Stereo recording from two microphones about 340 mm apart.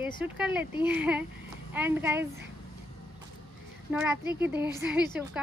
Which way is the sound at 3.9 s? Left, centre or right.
Centre.